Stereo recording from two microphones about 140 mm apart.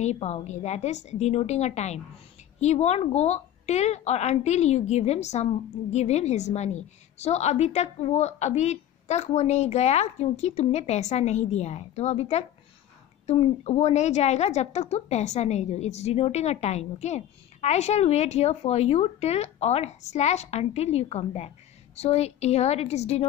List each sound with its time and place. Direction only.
0.0 s a woman's voice: 55° left (ahead or behind)